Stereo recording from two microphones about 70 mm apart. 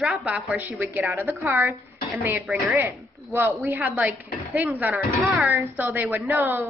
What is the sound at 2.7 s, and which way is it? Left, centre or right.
Speech, right.